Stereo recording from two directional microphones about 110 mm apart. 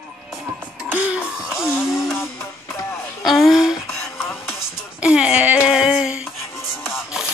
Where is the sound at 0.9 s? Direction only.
15° right (ahead or behind).